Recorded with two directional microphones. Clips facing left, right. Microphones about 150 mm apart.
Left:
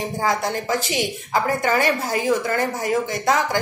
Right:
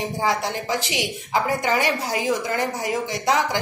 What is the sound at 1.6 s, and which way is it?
A woman's voice, 15° right (ahead or behind).